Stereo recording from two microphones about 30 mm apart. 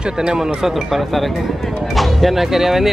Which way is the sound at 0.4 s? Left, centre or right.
Centre.